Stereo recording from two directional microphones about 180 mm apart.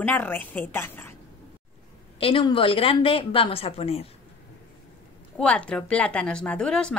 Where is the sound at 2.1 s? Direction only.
30° left (ahead or behind).